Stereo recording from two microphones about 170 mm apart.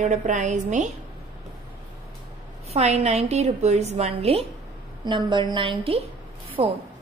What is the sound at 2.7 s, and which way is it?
A woman's voice, 40° right (ahead or behind).